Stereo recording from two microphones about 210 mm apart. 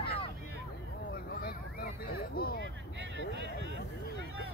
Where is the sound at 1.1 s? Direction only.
45° left (ahead or behind).